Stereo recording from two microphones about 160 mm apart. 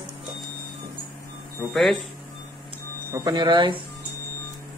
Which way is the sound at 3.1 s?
25° right (ahead or behind).